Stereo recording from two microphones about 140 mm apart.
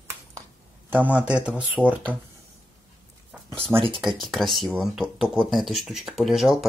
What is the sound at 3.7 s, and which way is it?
Speech, 40° right (ahead or behind).